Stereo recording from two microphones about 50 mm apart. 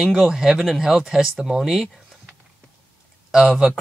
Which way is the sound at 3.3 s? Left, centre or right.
Centre.